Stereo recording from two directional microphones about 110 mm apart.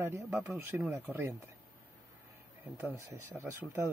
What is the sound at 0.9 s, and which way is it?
Speech, 20° right (ahead or behind).